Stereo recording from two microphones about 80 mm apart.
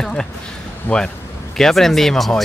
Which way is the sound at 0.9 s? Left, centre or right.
Left.